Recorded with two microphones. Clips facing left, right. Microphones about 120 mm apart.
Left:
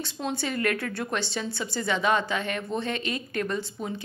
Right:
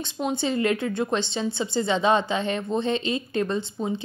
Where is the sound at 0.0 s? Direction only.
20° right (ahead or behind).